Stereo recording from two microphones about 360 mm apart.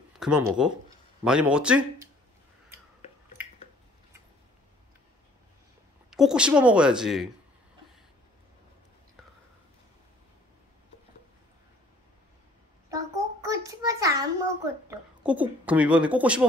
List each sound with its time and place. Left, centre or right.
0.2 s speech: centre
6.0 s speech: centre
12.9 s a child's voice: centre